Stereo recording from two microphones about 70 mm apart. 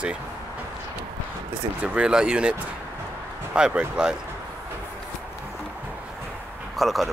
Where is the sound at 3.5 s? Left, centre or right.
Centre.